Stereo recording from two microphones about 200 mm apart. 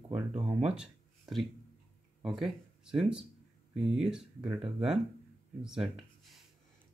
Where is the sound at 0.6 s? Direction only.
5° right (ahead or behind).